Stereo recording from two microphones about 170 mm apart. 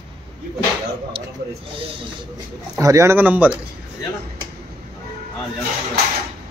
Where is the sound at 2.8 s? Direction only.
20° right (ahead or behind).